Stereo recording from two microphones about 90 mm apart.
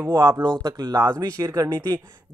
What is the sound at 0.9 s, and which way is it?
Speech, 35° right (ahead or behind).